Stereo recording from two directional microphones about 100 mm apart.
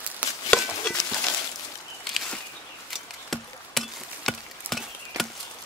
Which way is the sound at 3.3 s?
5° left (ahead or behind).